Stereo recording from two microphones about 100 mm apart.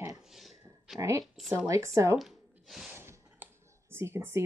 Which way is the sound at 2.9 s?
20° right (ahead or behind).